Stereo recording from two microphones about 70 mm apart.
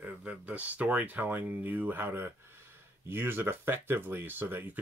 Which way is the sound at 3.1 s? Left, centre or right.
Right.